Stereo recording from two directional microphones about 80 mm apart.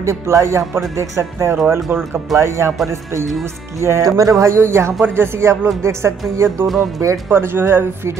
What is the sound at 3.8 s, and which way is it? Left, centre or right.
Speech, right.